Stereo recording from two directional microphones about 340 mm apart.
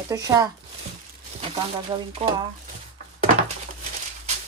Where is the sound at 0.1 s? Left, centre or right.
Centre.